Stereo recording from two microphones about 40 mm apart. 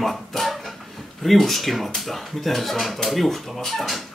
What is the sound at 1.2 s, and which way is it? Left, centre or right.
Speech, centre.